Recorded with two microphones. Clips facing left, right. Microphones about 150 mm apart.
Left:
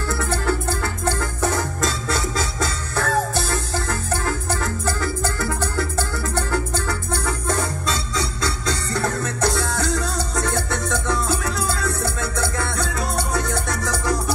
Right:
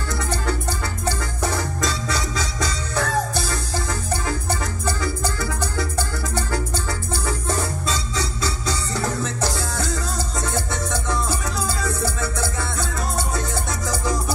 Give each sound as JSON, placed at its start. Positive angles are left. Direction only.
{"t": 0.1, "sound": "music", "side_deg": 55}